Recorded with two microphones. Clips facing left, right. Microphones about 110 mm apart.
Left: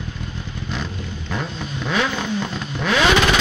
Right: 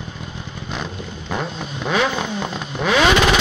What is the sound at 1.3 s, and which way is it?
Vehicle, 20° right (ahead or behind).